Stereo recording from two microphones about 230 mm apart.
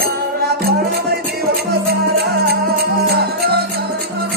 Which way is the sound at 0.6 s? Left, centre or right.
Right.